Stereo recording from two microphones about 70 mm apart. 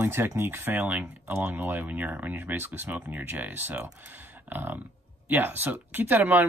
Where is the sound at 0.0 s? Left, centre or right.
Right.